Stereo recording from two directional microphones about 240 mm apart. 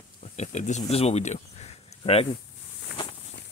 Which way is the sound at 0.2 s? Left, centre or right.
Left.